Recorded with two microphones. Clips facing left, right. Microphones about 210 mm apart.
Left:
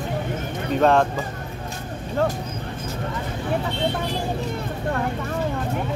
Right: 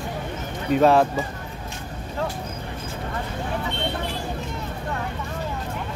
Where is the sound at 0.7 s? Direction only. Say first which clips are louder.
Right 1 dB; 5° right (ahead or behind).